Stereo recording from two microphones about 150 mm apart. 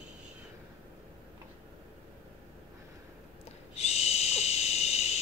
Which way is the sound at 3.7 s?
45° left (ahead or behind).